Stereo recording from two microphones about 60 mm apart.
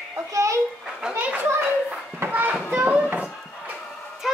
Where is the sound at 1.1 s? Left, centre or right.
Right.